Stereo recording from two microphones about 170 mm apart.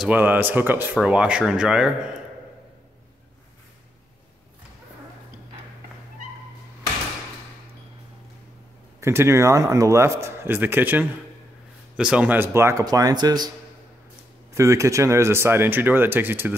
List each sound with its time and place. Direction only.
0.0 s speech: 10° right (ahead or behind)
9.0 s speech: 15° right (ahead or behind)
14.5 s speech: 15° right (ahead or behind)